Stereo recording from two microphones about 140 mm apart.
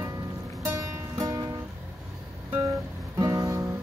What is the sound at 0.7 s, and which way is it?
Music, 25° right (ahead or behind).